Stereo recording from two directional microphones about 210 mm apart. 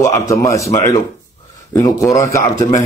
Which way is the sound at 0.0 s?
15° left (ahead or behind).